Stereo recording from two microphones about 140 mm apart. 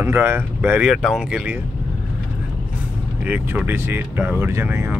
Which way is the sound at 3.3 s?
15° right (ahead or behind).